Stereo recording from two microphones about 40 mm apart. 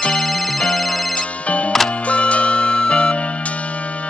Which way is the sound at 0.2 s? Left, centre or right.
Centre.